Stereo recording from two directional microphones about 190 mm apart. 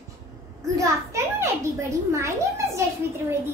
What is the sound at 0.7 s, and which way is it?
A child's voice, 15° right (ahead or behind).